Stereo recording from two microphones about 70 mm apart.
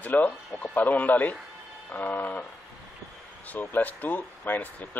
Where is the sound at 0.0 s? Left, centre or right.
Left.